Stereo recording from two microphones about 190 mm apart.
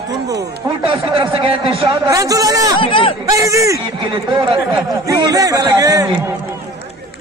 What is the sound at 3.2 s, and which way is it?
A man's voice, 15° right (ahead or behind).